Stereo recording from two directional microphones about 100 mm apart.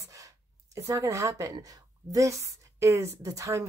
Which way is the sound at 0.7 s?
30° right (ahead or behind).